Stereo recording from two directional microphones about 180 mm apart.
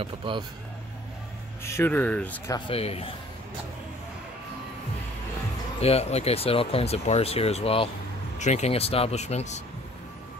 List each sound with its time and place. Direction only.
0.0 s speech: 30° right (ahead or behind)
1.6 s speech: 15° left (ahead or behind)
2.7 s speech: 35° left (ahead or behind)
5.8 s speech: 35° left (ahead or behind)